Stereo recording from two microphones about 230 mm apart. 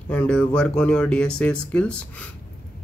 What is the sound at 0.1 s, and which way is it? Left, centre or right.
Speech, centre.